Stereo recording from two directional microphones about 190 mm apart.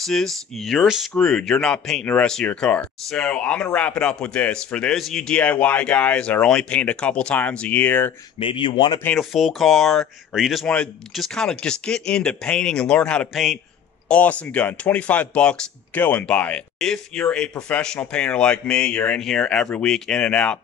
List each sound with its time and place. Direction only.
0.0 s speech: centre (ahead or behind)
8.4 s speech: 25° left (ahead or behind)
9.0 s speech: centre (ahead or behind)